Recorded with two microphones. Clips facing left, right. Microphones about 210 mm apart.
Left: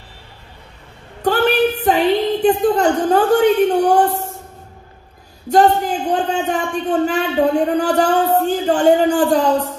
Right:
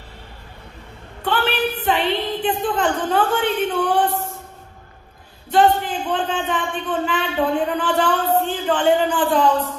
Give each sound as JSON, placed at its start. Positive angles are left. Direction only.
{"t": 1.2, "sound": "a woman's voice", "side_deg": 40}
{"t": 5.5, "sound": "a man's voice", "side_deg": 40}